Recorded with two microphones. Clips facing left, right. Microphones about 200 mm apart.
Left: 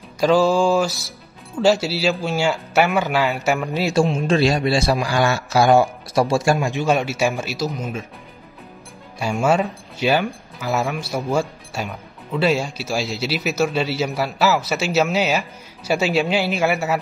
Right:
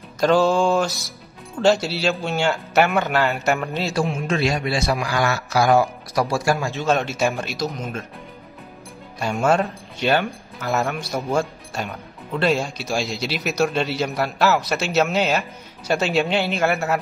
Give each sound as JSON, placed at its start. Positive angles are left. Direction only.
{"t": 0.2, "sound": "speech", "side_deg": 5}
{"t": 4.1, "sound": "a man's voice", "side_deg": 30}
{"t": 9.2, "sound": "speech", "side_deg": 5}